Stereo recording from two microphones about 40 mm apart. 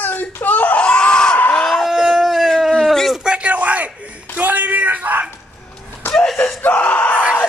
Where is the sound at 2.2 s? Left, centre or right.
Centre.